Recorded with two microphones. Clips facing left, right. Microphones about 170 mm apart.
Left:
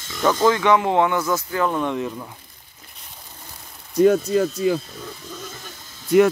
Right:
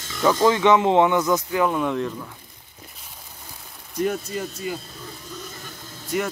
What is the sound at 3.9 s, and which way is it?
Speech, 90° left.